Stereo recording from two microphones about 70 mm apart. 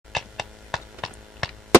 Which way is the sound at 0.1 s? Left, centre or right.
Centre.